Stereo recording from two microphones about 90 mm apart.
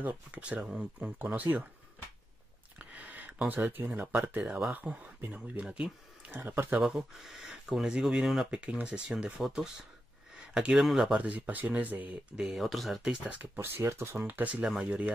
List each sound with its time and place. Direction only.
0.0 s speech: 15° right (ahead or behind)
2.8 s a sound: 15° right (ahead or behind)
3.4 s speech: 20° right (ahead or behind)
6.3 s speech: 25° right (ahead or behind)
6.8 s speech: 5° right (ahead or behind)
11.1 s speech: 15° right (ahead or behind)
12.4 s speech: 5° right (ahead or behind)
13.4 s speech: 25° right (ahead or behind)